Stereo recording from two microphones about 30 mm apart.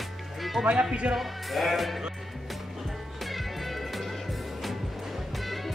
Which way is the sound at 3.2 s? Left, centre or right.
Centre.